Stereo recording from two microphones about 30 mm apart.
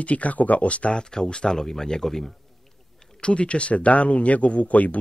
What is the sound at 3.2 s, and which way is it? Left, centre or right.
Speech, left.